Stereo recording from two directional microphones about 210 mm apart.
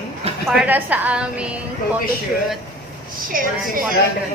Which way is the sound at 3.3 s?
40° right (ahead or behind).